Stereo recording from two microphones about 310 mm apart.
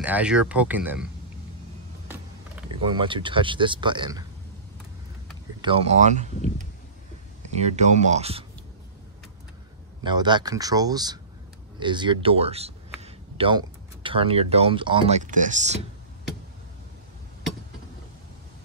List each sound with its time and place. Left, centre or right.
0.0 s speech: centre
2.8 s speech: centre
5.6 s speech: centre
10.0 s speech: centre